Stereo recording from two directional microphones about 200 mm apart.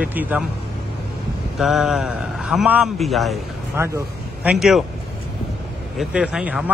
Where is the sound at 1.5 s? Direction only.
Centre (ahead or behind).